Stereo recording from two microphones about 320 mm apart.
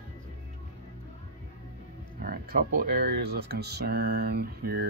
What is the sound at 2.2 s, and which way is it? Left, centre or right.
Speech, right.